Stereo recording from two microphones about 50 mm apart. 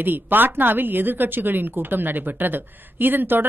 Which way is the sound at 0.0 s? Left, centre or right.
Right.